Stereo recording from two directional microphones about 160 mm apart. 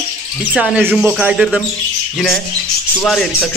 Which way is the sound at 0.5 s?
Centre (ahead or behind).